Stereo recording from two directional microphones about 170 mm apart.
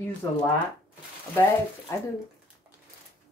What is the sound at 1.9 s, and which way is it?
Speech, 15° left (ahead or behind).